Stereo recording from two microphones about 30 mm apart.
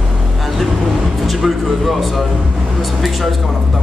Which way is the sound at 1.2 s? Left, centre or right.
Centre.